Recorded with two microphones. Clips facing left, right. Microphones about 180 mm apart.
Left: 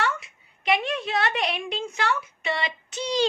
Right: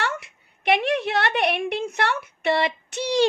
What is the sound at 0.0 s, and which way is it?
A woman's voice, 65° right (ahead or behind).